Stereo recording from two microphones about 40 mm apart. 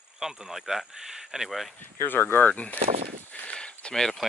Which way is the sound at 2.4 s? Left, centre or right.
Left.